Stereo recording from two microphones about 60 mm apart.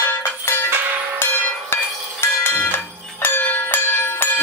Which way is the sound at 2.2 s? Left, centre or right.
Left.